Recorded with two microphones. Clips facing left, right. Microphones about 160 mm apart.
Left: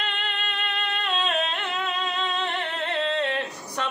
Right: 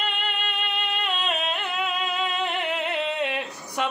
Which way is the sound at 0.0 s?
5° right (ahead or behind).